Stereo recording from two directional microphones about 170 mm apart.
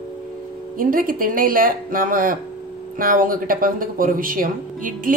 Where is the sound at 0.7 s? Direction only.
55° right (ahead or behind).